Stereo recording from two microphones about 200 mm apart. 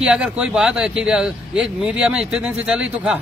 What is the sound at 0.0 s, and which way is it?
A man's voice, 5° right (ahead or behind).